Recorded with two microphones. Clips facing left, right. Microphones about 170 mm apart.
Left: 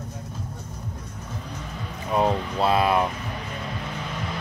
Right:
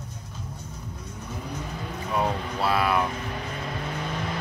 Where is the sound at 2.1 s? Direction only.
25° left (ahead or behind).